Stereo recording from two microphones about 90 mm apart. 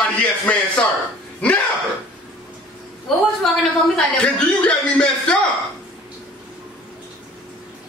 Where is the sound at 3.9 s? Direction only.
10° left (ahead or behind).